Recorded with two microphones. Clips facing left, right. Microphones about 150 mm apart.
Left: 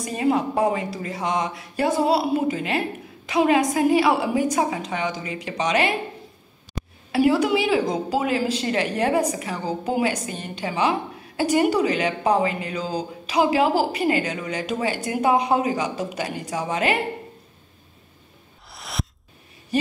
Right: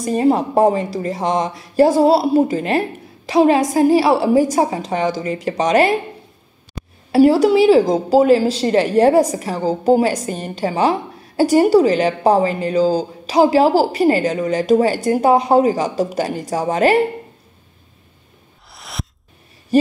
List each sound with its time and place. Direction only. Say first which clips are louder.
0.0 s a woman's voice: right 6 dB; 40° right (ahead or behind)
7.1 s a woman's voice: right 7 dB; 40° right (ahead or behind)
18.7 s a sound: even; centre (ahead or behind)